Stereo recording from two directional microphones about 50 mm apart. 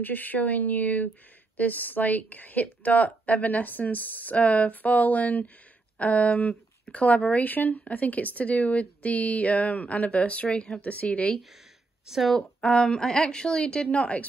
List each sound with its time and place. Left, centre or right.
0.0 s speech: left
12.1 s speech: centre
12.6 s a woman's voice: centre